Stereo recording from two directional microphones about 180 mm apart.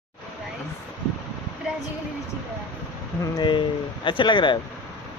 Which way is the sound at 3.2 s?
25° left (ahead or behind).